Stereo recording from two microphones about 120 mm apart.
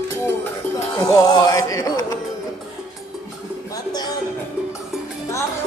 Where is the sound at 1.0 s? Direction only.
30° left (ahead or behind).